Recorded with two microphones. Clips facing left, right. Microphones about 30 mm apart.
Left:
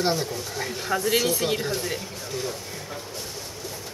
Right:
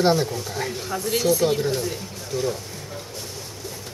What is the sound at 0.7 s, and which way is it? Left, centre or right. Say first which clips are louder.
Speech: left 5 dB; centre.